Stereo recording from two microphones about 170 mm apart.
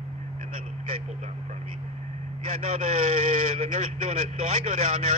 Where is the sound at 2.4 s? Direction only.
45° right (ahead or behind).